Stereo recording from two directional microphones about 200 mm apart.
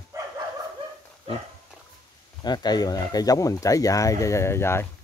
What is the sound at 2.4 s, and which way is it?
Speech, 20° left (ahead or behind).